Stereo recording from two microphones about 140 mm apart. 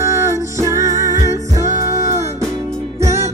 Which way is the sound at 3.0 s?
20° right (ahead or behind).